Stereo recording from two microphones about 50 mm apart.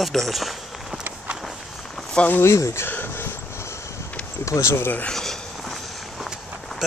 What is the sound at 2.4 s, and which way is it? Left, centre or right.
Speech, left.